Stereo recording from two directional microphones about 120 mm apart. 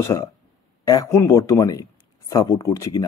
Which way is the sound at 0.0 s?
25° left (ahead or behind).